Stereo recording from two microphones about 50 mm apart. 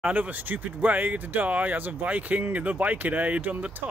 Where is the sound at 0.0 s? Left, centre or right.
Right.